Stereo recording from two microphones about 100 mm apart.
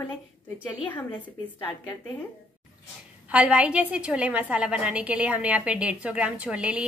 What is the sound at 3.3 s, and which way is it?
A woman's voice, 10° right (ahead or behind).